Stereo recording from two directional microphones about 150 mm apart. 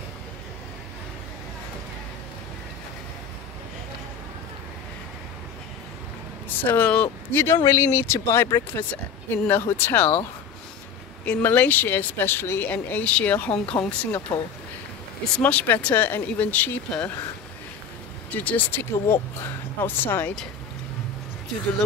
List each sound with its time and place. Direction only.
6.6 s speech: 10° left (ahead or behind)
11.2 s speech: 10° left (ahead or behind)
18.3 s speech: 10° left (ahead or behind)